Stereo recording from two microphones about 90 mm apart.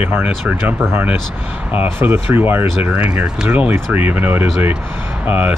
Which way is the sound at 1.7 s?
20° right (ahead or behind).